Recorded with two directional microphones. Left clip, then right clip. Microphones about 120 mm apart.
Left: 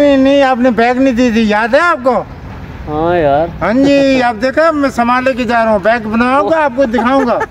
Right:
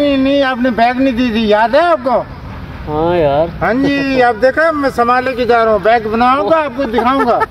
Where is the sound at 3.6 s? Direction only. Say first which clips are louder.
Left 4 dB; 80° left; by 7.3 s 40° left (ahead or behind).